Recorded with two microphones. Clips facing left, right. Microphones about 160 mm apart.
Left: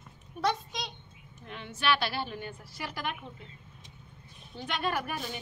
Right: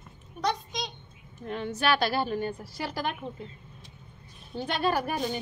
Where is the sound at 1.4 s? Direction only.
40° right (ahead or behind).